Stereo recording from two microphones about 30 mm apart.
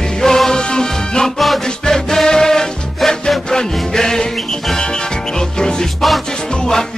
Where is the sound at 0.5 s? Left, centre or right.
Left.